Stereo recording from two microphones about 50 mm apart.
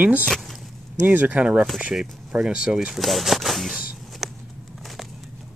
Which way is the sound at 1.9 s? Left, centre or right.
Centre.